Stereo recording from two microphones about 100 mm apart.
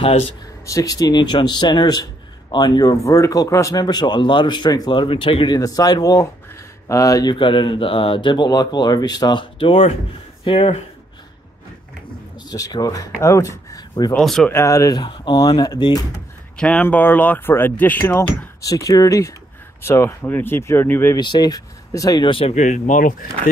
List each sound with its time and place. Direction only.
0.7 s speech: 35° left (ahead or behind)
3.8 s speech: 45° left (ahead or behind)
5.0 s speech: 60° left (ahead or behind)
5.6 s speech: 35° left (ahead or behind)
7.3 s speech: 55° left (ahead or behind)
12.4 s speech: 40° left (ahead or behind)
14.1 s speech: 5° left (ahead or behind)
14.5 s speech: 30° left (ahead or behind)
15.0 s speech: 50° left (ahead or behind)
16.5 s speech: 15° left (ahead or behind)
18.6 s speech: 35° left (ahead or behind)
21.2 s speech: 45° left (ahead or behind)
22.2 s speech: 60° left (ahead or behind)